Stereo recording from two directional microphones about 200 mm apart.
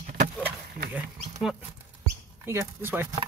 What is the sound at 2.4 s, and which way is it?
Speech, 10° right (ahead or behind).